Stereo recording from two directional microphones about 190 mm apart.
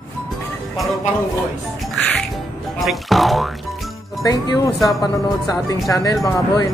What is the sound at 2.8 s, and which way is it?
Speech, centre (ahead or behind).